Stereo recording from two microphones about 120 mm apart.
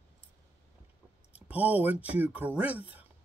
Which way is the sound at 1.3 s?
15° right (ahead or behind).